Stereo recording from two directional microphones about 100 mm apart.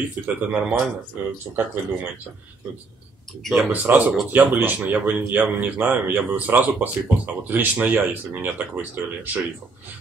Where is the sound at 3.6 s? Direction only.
20° right (ahead or behind).